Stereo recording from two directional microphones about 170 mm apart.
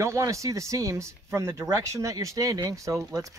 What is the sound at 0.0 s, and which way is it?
Speech, 15° right (ahead or behind).